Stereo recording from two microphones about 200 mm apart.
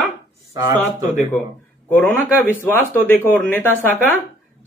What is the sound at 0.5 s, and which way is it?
Speech, 15° right (ahead or behind).